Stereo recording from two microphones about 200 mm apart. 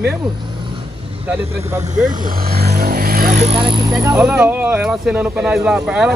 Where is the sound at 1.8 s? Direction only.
40° right (ahead or behind).